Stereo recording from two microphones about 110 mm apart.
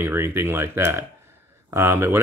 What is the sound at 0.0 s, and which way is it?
Speech, 20° right (ahead or behind).